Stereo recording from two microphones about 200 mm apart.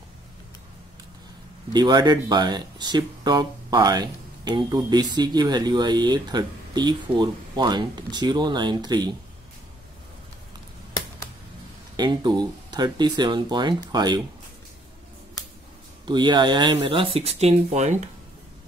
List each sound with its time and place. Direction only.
1.7 s speech: 20° right (ahead or behind)
12.0 s speech: 20° right (ahead or behind)
16.1 s speech: 20° right (ahead or behind)